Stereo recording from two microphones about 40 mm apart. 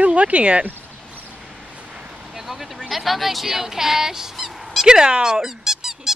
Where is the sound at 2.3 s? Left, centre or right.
Centre.